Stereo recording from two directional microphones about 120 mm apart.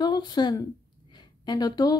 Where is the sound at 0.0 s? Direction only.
35° left (ahead or behind).